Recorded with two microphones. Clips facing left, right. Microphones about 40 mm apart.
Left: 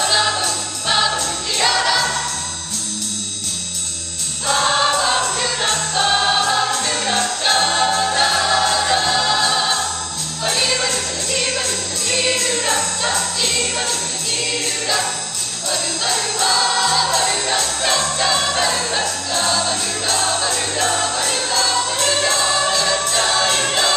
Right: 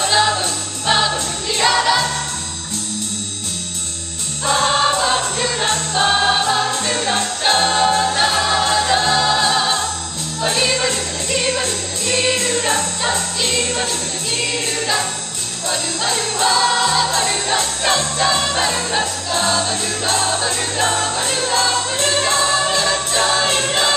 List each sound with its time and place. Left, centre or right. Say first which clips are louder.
0.0 s music: right 2 dB; centre
4.5 s choir: right 1 dB; centre
5.9 s music: right 1 dB; centre
6.8 s music: even; centre
8.1 s choir: even; centre
10.4 s music: right 2 dB; centre
18.7 s music: right 1 dB; right
21.0 s music: even; right
21.3 s choir: right 2 dB; centre